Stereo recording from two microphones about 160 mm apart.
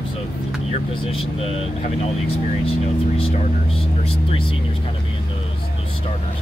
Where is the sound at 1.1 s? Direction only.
35° left (ahead or behind).